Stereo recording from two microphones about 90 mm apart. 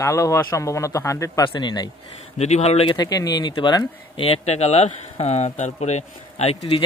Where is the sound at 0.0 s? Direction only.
35° left (ahead or behind).